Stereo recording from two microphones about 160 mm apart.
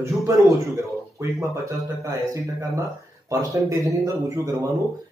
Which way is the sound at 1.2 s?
20° right (ahead or behind).